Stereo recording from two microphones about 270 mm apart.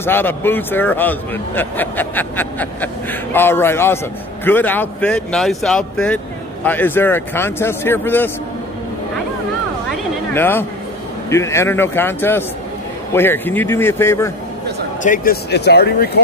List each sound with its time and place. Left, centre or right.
0.0 s a man's voice: centre
9.8 s a sound: centre
11.2 s a man's voice: centre
15.0 s speech: left